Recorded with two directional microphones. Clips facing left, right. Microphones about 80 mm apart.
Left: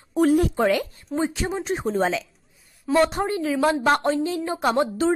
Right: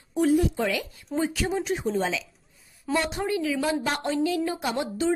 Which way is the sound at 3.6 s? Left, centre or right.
Left.